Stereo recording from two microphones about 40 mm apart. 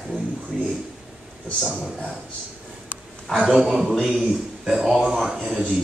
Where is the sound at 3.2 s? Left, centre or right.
Centre.